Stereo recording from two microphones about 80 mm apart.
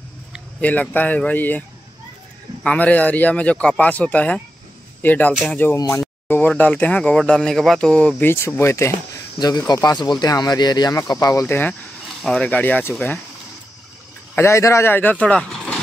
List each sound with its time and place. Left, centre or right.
0.6 s speech: centre
2.6 s speech: centre
8.2 s speech: left
9.8 s speech: left
11.1 s speech: left
11.4 s speech: left
12.2 s speech: centre
12.4 s speech: centre
14.3 s speech: left; by 15.4 s centre
15.4 s vehicle: centre